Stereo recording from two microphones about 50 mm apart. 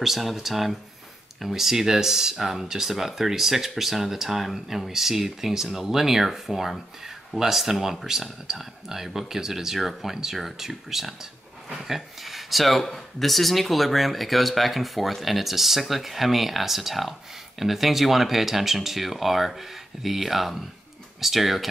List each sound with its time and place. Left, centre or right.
0.0 s speech: centre